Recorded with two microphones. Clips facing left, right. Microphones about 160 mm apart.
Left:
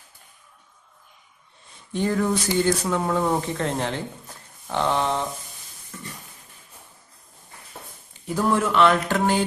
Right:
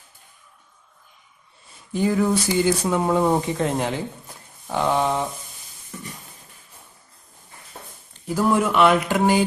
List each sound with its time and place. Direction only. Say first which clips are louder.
1.9 s speech: right 3 dB; 5° right (ahead or behind)
5.9 s a sound: right 2 dB; 15° right (ahead or behind)
8.1 s speech: right 2 dB; 5° right (ahead or behind)